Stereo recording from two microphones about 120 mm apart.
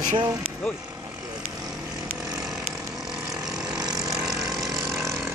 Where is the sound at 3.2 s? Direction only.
5° right (ahead or behind).